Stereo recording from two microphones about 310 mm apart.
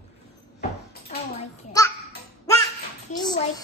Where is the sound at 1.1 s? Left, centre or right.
Left.